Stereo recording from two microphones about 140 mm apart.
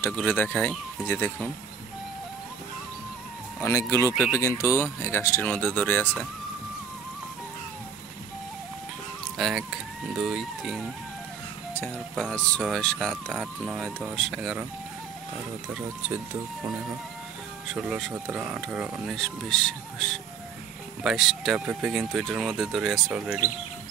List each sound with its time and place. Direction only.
0.0 s speech: 15° left (ahead or behind)
3.6 s speech: 20° left (ahead or behind)
9.4 s speech: 5° right (ahead or behind)
12.2 s speech: 5° left (ahead or behind)
17.7 s speech: 5° right (ahead or behind)